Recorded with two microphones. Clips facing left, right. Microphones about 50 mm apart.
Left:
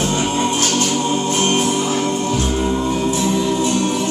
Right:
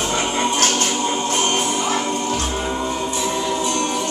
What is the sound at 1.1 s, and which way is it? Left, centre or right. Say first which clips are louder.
Music: left 3 dB; centre.